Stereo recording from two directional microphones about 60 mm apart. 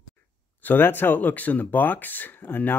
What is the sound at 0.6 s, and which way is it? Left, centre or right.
Speech, left.